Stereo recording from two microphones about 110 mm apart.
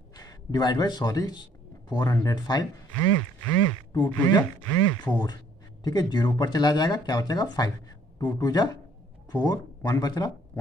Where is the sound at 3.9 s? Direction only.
40° left (ahead or behind).